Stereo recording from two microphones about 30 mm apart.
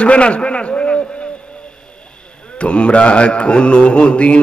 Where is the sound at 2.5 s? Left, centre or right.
Left.